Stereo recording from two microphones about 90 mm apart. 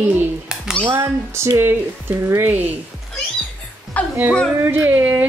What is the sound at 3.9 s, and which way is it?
Speech, 15° left (ahead or behind).